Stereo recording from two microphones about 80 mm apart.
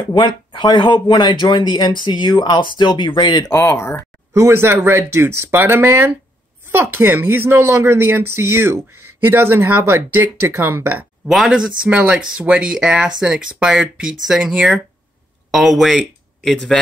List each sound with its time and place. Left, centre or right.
0.1 s speech: left
3.5 s speech: left
4.3 s speech: right
11.2 s speech: centre